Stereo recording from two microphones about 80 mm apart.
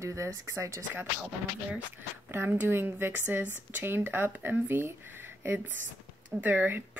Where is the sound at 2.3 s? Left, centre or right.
Right.